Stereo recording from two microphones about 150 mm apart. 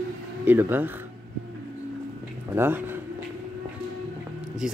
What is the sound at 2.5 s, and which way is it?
Speech, 15° right (ahead or behind).